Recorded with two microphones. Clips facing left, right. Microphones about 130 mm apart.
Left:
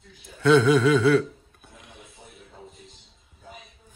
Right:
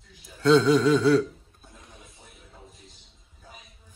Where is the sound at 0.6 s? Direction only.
60° left (ahead or behind).